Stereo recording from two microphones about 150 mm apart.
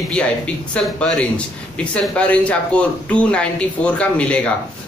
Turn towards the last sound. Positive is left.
turn(degrees=10)  # may be behind; listen again after turning